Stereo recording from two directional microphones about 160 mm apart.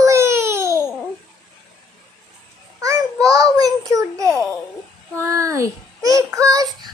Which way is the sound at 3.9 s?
20° right (ahead or behind).